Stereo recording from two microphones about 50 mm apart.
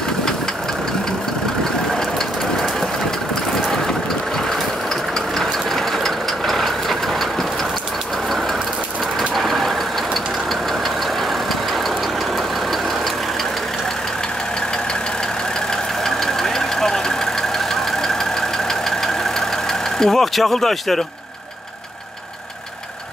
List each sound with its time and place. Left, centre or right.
3.5 s mechanisms: centre
6.0 s vehicle: centre
9.3 s vehicle: centre
16.4 s vehicle: centre
20.0 s speech: centre